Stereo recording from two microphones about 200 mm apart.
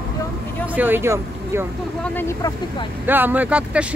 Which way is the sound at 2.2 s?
15° left (ahead or behind).